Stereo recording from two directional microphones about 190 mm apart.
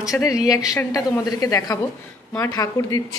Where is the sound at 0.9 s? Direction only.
20° left (ahead or behind).